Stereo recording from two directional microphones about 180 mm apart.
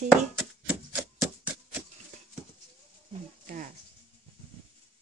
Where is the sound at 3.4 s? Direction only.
50° right (ahead or behind).